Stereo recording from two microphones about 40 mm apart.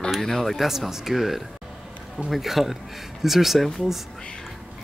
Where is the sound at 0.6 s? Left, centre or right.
Centre.